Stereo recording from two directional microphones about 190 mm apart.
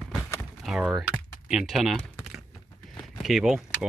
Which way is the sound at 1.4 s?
Centre (ahead or behind).